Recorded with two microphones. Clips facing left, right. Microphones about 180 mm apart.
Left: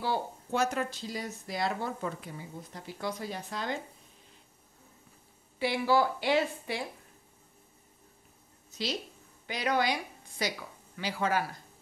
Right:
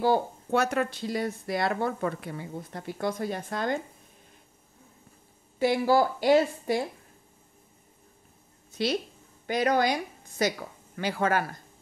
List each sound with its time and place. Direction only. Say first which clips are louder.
0.0 s speech: right 8 dB; 55° right (ahead or behind)
5.6 s a woman's voice: right 4 dB; 45° right (ahead or behind)
8.7 s a woman's voice: right 7 dB; 55° right (ahead or behind)